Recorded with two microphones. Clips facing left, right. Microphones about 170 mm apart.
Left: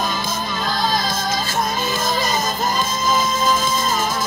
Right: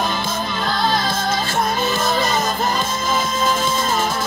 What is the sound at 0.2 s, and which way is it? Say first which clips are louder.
Music: right 1 dB; 60° right (ahead or behind).